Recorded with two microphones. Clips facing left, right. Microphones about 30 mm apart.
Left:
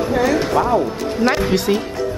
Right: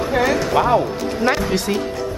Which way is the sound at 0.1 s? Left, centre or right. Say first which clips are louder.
Even; centre.